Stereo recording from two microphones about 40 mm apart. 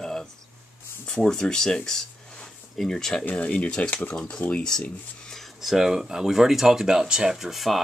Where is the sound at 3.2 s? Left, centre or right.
Left.